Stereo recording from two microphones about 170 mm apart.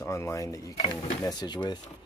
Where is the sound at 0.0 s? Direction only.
15° left (ahead or behind).